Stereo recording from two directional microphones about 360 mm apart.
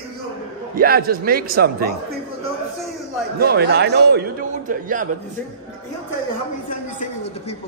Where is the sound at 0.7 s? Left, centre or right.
Right.